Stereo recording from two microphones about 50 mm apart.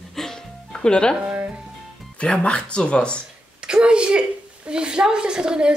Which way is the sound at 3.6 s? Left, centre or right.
Centre.